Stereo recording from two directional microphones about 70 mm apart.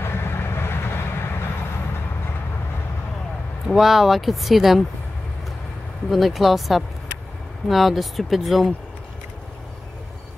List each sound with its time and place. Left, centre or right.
0.0 s vehicle: left
3.6 s speech: centre
6.0 s speech: centre